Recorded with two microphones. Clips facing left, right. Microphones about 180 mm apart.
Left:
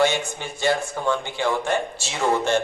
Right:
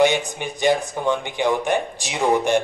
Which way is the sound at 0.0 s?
15° right (ahead or behind).